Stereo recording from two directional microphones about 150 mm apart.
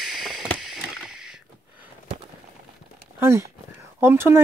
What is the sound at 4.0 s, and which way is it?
Speech, 15° right (ahead or behind).